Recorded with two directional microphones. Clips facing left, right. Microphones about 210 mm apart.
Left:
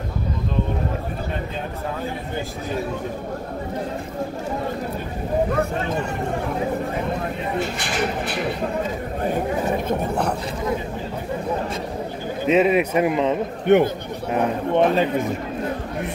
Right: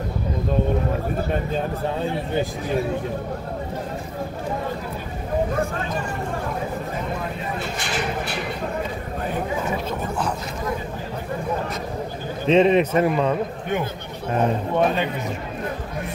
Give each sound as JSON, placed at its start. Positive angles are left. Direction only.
{"t": 9.8, "sound": "speech", "side_deg": 60}
{"t": 12.4, "sound": "speech", "side_deg": 10}
{"t": 13.7, "sound": "a man's voice", "side_deg": 70}
{"t": 14.7, "sound": "speech", "side_deg": 25}